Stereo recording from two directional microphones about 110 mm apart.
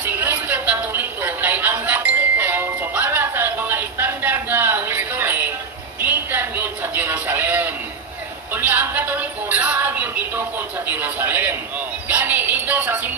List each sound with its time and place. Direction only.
0.0 s a sound: 15° right (ahead or behind)
8.5 s music: 15° right (ahead or behind)
10.9 s a man's voice: 15° right (ahead or behind)
12.1 s music: 15° right (ahead or behind)